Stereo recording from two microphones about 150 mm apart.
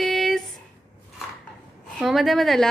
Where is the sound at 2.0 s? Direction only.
Centre (ahead or behind).